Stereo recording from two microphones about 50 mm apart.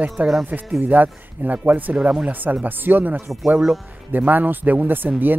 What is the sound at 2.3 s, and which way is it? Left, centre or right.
Speech, right.